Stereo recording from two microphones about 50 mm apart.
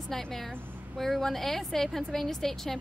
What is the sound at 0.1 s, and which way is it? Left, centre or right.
A woman's voice, centre.